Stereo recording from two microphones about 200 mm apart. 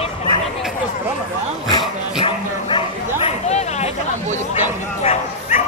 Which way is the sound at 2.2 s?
25° left (ahead or behind).